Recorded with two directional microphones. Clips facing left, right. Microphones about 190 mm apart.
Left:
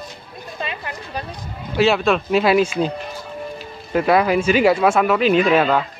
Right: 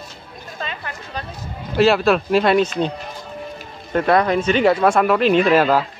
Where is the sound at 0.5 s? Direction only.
15° left (ahead or behind).